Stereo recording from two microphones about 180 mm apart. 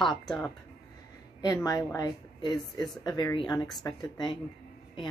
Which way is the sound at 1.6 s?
20° left (ahead or behind).